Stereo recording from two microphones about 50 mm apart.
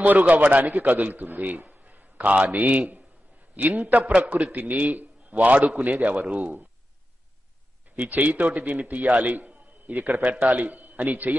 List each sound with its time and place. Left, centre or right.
0.0 s a man's voice: right
7.9 s a man's voice: right